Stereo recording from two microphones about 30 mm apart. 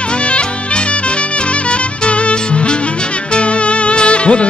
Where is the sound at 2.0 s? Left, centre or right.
Left.